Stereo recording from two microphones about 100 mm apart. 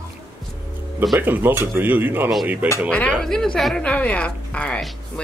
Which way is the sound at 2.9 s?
10° left (ahead or behind).